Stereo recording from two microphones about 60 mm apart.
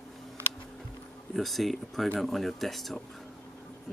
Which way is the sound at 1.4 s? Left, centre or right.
Centre.